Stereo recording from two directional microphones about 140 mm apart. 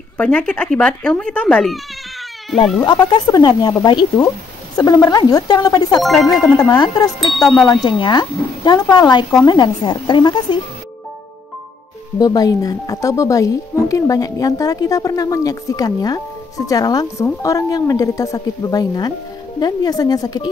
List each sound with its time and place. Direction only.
0.2 s speech: 10° left (ahead or behind)
2.8 s a woman's voice: 30° left (ahead or behind)
12.2 s a woman's voice: 30° left (ahead or behind)